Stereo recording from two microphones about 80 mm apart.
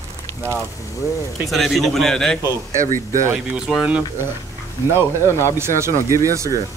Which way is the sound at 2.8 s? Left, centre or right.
Left.